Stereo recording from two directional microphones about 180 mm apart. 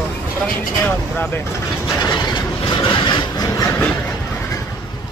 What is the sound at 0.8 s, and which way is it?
Speech, 10° left (ahead or behind).